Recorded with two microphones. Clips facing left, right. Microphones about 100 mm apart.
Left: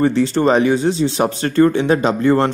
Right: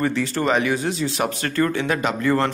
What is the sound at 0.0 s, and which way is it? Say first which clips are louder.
Speech: left 7 dB; 30° left (ahead or behind).